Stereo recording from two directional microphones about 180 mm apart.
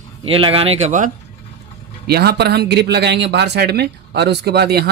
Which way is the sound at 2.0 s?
60° right (ahead or behind).